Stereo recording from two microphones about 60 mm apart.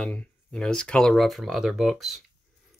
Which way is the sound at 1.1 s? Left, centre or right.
Centre.